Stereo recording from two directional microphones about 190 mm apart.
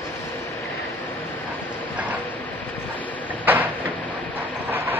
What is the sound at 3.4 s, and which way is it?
Train, 10° right (ahead or behind).